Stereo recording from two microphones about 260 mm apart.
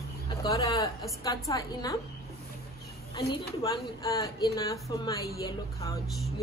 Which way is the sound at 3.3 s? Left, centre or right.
Centre.